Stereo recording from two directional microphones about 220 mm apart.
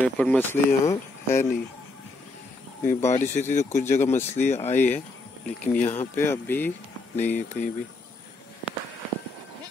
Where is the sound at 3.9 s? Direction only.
10° left (ahead or behind).